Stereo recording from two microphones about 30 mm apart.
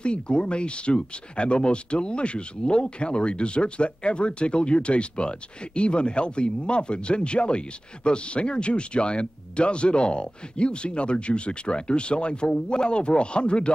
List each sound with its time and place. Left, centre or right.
0.0 s speech: left